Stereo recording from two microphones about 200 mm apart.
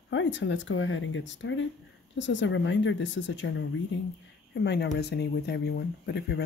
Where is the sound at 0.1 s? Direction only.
65° left (ahead or behind).